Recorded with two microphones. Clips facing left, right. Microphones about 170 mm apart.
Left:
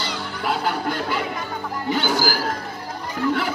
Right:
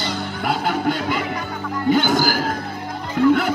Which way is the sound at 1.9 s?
50° right (ahead or behind).